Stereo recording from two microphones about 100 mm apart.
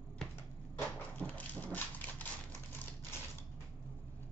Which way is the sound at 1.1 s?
15° left (ahead or behind).